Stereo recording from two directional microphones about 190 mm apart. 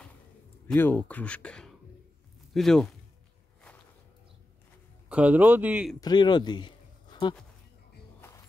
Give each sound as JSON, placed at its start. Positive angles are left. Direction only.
{"t": 0.7, "sound": "speech", "side_deg": 10}
{"t": 5.1, "sound": "speech", "side_deg": -5}
{"t": 5.9, "sound": "speech", "side_deg": 20}